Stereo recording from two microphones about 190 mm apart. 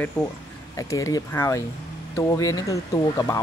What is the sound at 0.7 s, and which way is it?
Speech, 15° left (ahead or behind).